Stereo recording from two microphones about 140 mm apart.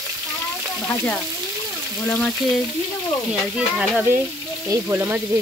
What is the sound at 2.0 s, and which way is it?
Speech, 5° left (ahead or behind).